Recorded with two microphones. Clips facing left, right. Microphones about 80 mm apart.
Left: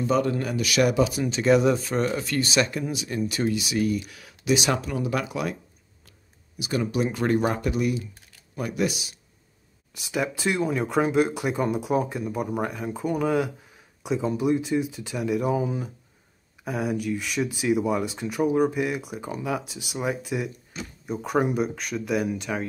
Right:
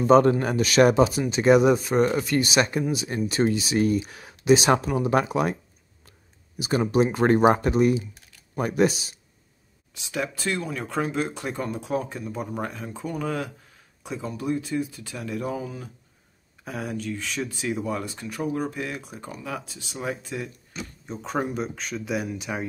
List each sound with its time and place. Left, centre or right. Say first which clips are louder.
0.0 s speech: right 6 dB; right
1.3 s speech: right 2 dB; right
6.6 s speech: right 4 dB; right
9.9 s speech: left 2 dB; centre